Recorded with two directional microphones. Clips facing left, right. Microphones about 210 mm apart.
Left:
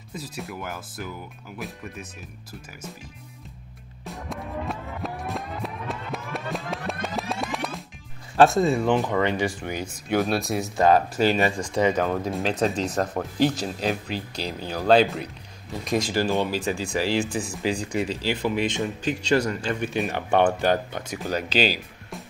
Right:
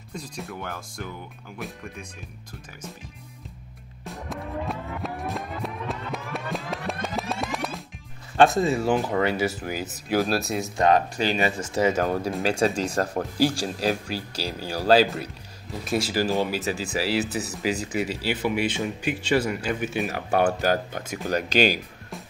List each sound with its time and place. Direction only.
0.1 s speech: 5° left (ahead or behind)
4.0 s music: centre (ahead or behind)
8.4 s speech: centre (ahead or behind)
20.2 s speech: 20° left (ahead or behind)
21.3 s speech: 45° right (ahead or behind)